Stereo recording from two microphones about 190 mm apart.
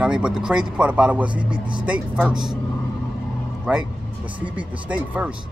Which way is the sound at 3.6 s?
5° right (ahead or behind).